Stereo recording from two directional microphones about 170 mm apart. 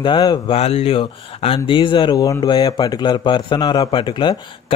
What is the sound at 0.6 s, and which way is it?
Speech, 35° left (ahead or behind).